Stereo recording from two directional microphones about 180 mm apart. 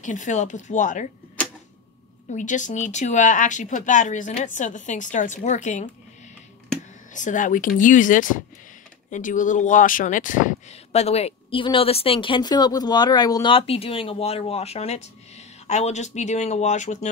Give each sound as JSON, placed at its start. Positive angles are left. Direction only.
{"t": 0.0, "sound": "speech", "side_deg": 45}
{"t": 2.3, "sound": "speech", "side_deg": 45}
{"t": 7.2, "sound": "speech", "side_deg": 45}